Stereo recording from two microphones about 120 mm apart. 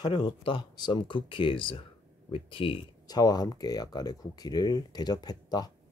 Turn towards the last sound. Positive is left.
turn(degrees=35)  # may be behind; listen again after turning